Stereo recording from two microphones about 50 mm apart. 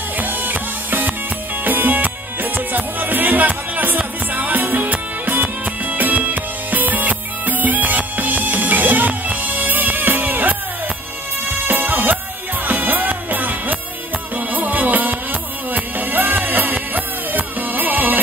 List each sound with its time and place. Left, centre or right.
0.2 s music: right
11.6 s music: right